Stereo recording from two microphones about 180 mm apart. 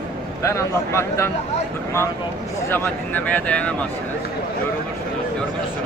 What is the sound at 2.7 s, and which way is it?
Speech, 10° left (ahead or behind).